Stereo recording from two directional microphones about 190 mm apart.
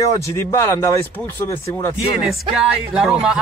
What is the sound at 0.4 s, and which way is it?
A man's voice, 15° left (ahead or behind).